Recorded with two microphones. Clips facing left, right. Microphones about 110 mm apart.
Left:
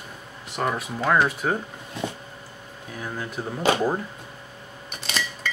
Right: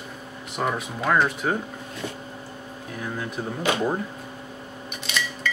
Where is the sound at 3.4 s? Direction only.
5° left (ahead or behind).